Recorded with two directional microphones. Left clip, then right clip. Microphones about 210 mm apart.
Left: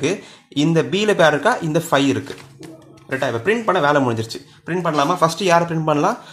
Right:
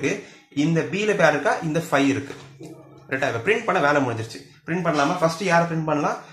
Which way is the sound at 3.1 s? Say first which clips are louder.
Left 2 dB; 35° left (ahead or behind).